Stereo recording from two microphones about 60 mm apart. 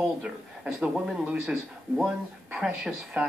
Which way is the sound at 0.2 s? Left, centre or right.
Centre.